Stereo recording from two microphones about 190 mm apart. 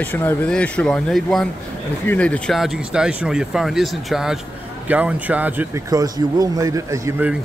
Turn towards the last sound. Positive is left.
turn(degrees=-15)  # may be behind; listen again after turning